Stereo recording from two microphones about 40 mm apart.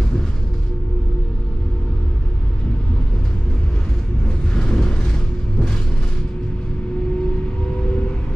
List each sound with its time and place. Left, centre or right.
4.6 s vehicle: centre